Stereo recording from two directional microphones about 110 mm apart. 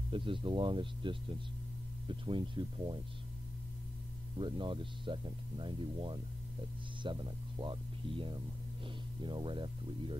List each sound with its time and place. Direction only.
0.1 s speech: 50° right (ahead or behind)
4.4 s speech: 50° right (ahead or behind)